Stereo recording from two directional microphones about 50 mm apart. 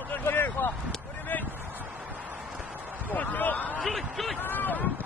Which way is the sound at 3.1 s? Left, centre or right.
Left.